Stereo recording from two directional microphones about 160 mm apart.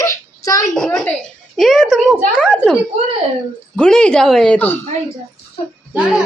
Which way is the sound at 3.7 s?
5° left (ahead or behind).